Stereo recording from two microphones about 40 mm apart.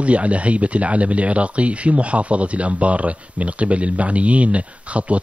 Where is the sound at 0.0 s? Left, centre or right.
Right.